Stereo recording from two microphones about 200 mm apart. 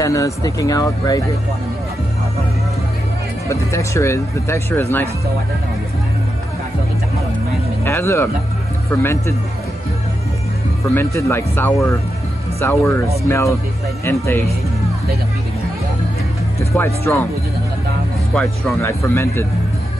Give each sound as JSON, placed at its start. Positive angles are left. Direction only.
{"t": 0.0, "sound": "speech", "side_deg": 15}
{"t": 3.4, "sound": "speech", "side_deg": 15}
{"t": 7.8, "sound": "speech", "side_deg": 15}
{"t": 11.0, "sound": "speech", "side_deg": 10}
{"t": 16.7, "sound": "speech", "side_deg": 15}
{"t": 18.3, "sound": "speech", "side_deg": 5}